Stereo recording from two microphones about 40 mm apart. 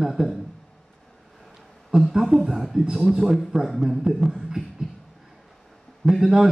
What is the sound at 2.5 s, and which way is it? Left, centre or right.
A man's voice, centre.